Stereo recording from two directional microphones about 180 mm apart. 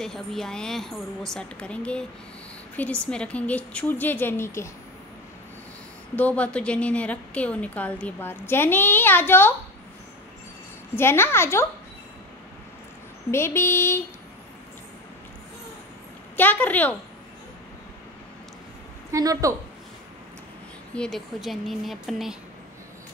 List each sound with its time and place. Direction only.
0.0 s a woman's voice: centre (ahead or behind)
6.1 s a woman's voice: 10° left (ahead or behind)
11.0 s a woman's voice: 15° left (ahead or behind)
13.3 s a woman's voice: 15° left (ahead or behind)
16.3 s a woman's voice: 10° left (ahead or behind)
19.1 s a woman's voice: 20° right (ahead or behind)
20.9 s a woman's voice: 5° left (ahead or behind)